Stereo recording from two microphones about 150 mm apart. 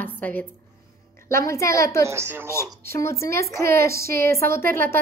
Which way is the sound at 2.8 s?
20° left (ahead or behind).